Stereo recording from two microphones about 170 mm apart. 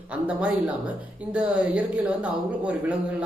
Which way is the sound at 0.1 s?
10° right (ahead or behind).